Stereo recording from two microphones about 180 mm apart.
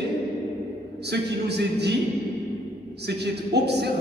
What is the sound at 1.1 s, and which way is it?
Speech, 65° right (ahead or behind).